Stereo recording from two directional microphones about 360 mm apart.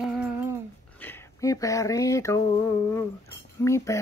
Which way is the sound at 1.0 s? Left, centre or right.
Centre.